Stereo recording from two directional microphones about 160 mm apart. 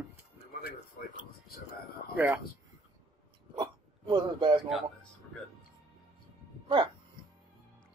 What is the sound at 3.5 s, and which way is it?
Hiccup, 30° right (ahead or behind).